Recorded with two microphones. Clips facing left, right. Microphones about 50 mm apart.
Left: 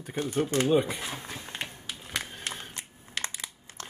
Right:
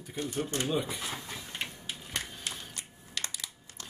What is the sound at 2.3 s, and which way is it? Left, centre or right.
Crushing, left.